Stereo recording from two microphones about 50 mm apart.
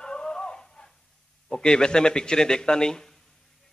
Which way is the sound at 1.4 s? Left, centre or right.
Centre.